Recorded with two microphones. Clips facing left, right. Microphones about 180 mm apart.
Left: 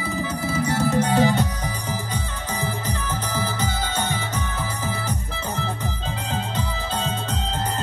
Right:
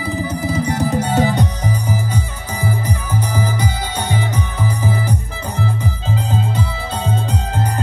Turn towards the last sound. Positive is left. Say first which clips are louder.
# right 5 dB
turn(degrees=-10)  # may be behind; listen again after turning